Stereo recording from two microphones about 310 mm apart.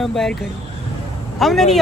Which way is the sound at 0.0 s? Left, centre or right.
Centre.